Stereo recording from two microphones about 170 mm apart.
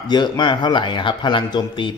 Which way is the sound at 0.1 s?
25° left (ahead or behind).